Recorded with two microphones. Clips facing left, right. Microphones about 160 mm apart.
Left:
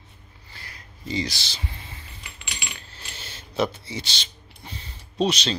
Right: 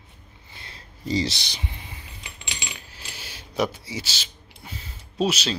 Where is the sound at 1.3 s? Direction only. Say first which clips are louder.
Even; 20° right (ahead or behind).